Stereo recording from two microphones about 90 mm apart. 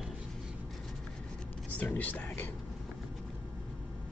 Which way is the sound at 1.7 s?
20° left (ahead or behind).